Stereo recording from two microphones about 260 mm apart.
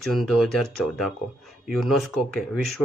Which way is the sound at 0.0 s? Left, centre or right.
Centre.